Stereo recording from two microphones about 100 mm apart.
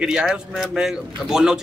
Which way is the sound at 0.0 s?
5° right (ahead or behind).